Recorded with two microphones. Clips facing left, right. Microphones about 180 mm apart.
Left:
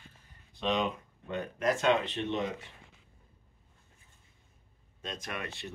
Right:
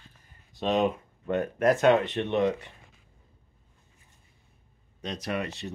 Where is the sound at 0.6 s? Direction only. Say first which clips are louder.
Right 6 dB; 45° right (ahead or behind); by 2.7 s 65° right (ahead or behind).